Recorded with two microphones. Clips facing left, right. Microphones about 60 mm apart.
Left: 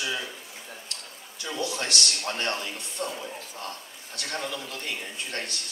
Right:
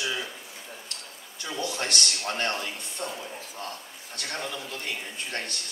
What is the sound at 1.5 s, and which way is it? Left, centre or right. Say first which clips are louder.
Speech: even; right.